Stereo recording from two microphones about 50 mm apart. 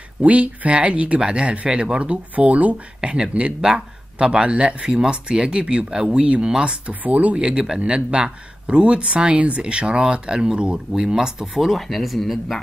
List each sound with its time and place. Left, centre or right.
0.2 s speech: right
3.0 s speech: centre
6.9 s speech: right
7.3 s speech: centre